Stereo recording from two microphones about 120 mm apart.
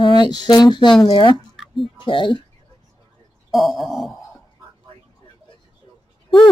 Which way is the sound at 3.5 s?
Centre (ahead or behind).